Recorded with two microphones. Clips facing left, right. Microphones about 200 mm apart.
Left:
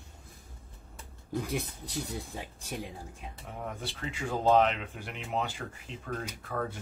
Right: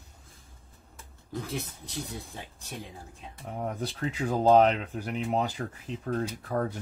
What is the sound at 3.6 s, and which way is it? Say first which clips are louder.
Speech: right 6 dB; 35° right (ahead or behind).